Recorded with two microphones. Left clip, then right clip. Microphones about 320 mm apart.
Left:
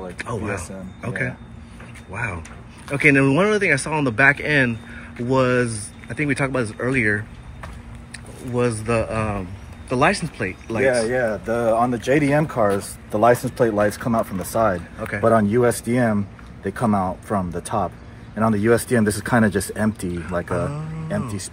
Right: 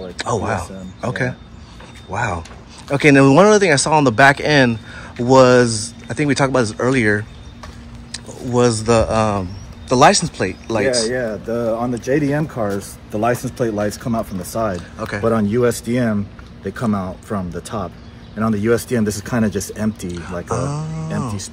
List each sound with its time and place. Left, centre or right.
0.2 s speech: centre
11.1 s speech: left; by 14.8 s centre
15.0 s speech: centre
15.2 s speech: centre